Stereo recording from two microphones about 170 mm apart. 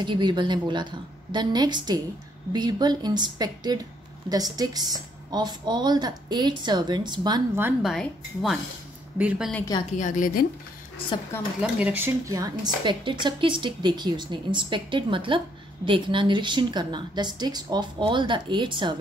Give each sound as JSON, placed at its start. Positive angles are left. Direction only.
{"t": 0.0, "sound": "a woman's voice", "side_deg": -25}
{"t": 7.8, "sound": "a woman's voice", "side_deg": 0}
{"t": 9.9, "sound": "a woman's voice", "side_deg": 50}
{"t": 11.6, "sound": "a woman's voice", "side_deg": -10}